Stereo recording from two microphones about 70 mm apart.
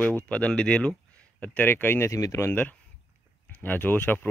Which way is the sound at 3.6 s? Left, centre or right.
Left.